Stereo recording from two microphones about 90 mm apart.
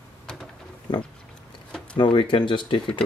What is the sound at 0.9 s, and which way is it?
Pig, 55° left (ahead or behind).